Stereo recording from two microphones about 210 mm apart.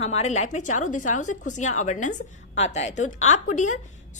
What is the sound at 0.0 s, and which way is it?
A woman's voice, 30° left (ahead or behind).